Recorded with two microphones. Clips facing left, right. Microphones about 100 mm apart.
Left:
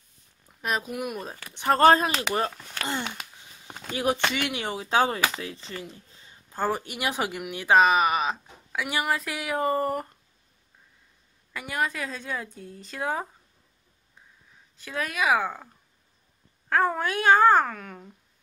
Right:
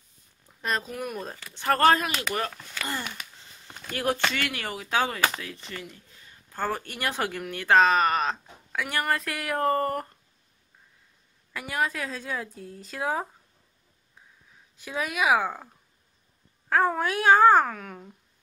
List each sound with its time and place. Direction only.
0.5 s speech: 5° left (ahead or behind)
1.5 s speech: 20° left (ahead or behind)
3.3 s a sound: 15° left (ahead or behind)
3.9 s speech: 15° left (ahead or behind)
6.5 s speech: 10° left (ahead or behind)
11.5 s a woman's voice: centre (ahead or behind)
14.1 s a sound: 5° right (ahead or behind)
16.6 s a woman's voice: centre (ahead or behind)